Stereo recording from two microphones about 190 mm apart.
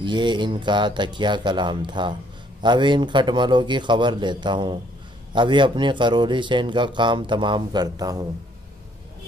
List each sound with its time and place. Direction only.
0.0 s a man's voice: 25° right (ahead or behind)